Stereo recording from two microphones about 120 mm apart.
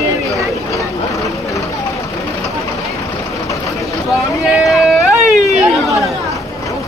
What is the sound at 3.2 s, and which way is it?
Vehicle, 25° left (ahead or behind).